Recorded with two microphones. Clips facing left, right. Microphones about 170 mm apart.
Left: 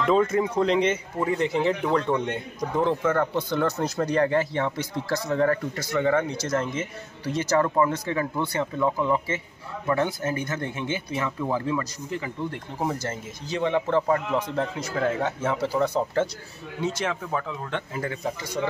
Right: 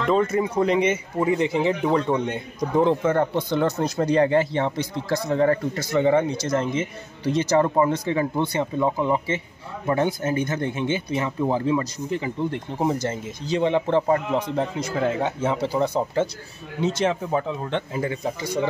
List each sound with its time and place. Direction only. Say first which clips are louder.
0.1 s speech: right 1 dB; 5° right (ahead or behind)